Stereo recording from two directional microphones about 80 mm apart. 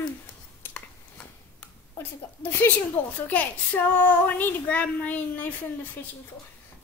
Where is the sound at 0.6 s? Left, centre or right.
Left.